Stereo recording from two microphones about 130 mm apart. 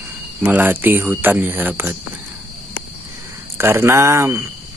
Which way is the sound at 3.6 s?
20° right (ahead or behind).